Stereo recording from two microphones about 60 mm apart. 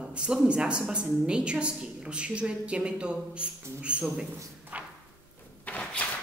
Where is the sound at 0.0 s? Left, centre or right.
Centre.